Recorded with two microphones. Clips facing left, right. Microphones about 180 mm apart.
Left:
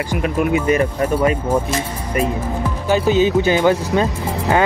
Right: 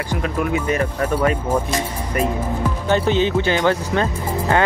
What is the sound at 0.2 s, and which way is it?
Speech, 15° left (ahead or behind).